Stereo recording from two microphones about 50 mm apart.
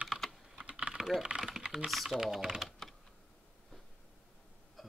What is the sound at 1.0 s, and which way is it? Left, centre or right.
Speech, centre.